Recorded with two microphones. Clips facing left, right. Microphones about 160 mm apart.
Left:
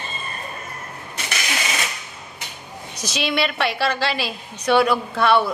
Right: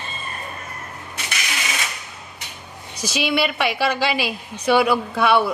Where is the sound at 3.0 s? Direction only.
10° right (ahead or behind).